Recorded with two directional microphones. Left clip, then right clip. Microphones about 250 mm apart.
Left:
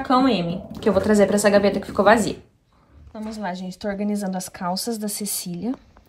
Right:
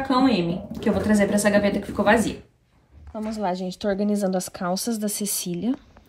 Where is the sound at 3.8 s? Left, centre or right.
Left.